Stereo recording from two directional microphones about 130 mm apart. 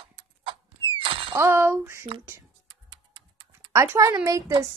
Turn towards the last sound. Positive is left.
turn(degrees=-25)  # may be behind; listen again after turning